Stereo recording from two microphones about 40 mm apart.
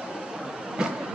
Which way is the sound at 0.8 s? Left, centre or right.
Right.